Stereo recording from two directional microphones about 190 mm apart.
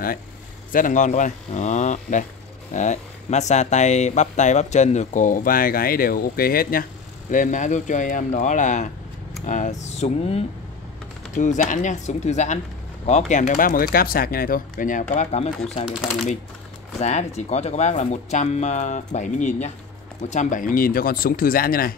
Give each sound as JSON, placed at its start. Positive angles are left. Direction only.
{"t": 0.7, "sound": "speech", "side_deg": 45}
{"t": 17.0, "sound": "speech", "side_deg": 35}